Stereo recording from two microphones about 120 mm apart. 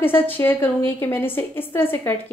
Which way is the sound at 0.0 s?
15° left (ahead or behind).